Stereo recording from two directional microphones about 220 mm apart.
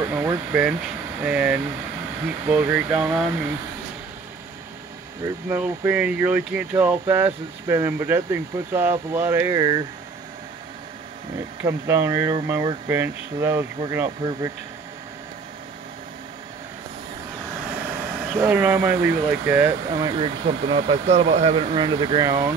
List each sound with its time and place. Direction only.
0.0 s air conditioning: 10° right (ahead or behind)
1.2 s speech: 5° right (ahead or behind)
5.5 s speech: 5° right (ahead or behind)
11.6 s speech: 10° right (ahead or behind)
18.3 s speech: 10° right (ahead or behind)
20.0 s speech: 20° right (ahead or behind)